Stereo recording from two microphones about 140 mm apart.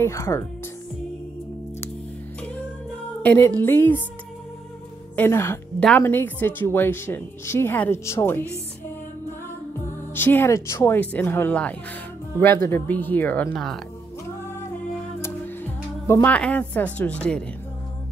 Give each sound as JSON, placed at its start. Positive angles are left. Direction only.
{"t": 0.0, "sound": "speech", "side_deg": 20}
{"t": 3.2, "sound": "a woman's voice", "side_deg": 15}
{"t": 5.1, "sound": "a woman's voice", "side_deg": 15}
{"t": 10.1, "sound": "a woman's voice", "side_deg": 15}
{"t": 15.2, "sound": "music", "side_deg": 15}
{"t": 16.3, "sound": "a woman's voice", "side_deg": 10}